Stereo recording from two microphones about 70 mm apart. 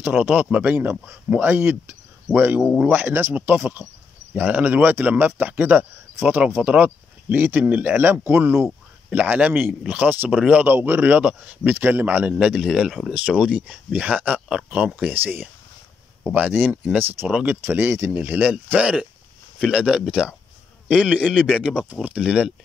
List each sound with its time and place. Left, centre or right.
0.0 s speech: right
9.1 s speech: right
10.3 s a man's voice: centre
10.6 s speech: right
12.4 s a man's voice: centre
15.0 s speech: right
19.6 s a man's voice: centre